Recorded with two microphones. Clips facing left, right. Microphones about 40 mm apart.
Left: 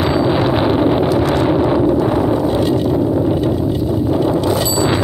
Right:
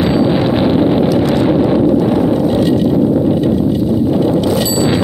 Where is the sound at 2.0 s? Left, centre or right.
Centre.